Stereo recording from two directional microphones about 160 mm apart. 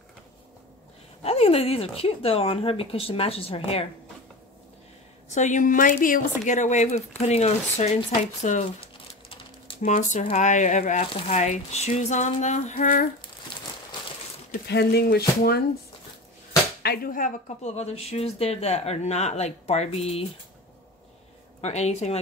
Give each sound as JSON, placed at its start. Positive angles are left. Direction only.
{"t": 1.2, "sound": "speech", "side_deg": 40}
{"t": 5.3, "sound": "speech", "side_deg": 50}
{"t": 9.8, "sound": "speech", "side_deg": 50}
{"t": 14.5, "sound": "speech", "side_deg": 85}
{"t": 16.8, "sound": "speech", "side_deg": 70}
{"t": 17.7, "sound": "speech", "side_deg": 40}
{"t": 21.5, "sound": "speech", "side_deg": 45}